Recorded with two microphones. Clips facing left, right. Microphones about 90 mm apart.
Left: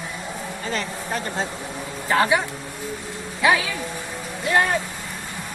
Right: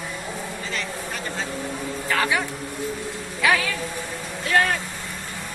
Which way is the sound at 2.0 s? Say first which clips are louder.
Left 4 dB; 25° left (ahead or behind).